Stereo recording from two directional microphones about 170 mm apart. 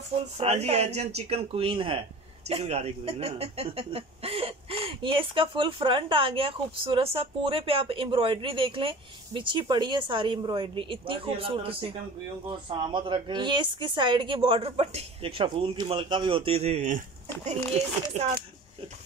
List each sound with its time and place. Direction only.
0.4 s speech: 35° right (ahead or behind)